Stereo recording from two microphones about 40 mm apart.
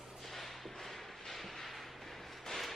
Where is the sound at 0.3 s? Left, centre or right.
Centre.